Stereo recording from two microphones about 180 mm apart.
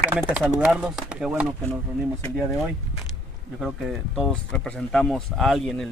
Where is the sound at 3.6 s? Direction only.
Centre (ahead or behind).